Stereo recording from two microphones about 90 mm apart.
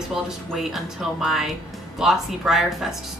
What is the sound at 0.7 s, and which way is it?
A woman's voice, 5° right (ahead or behind).